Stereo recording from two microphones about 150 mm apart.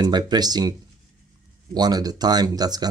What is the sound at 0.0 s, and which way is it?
Speech, 25° right (ahead or behind).